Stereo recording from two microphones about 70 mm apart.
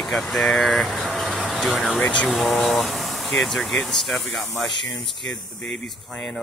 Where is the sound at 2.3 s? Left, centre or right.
Centre.